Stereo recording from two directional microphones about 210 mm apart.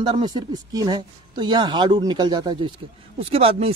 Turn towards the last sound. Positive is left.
turn(degrees=-30)  # may be behind; listen again after turning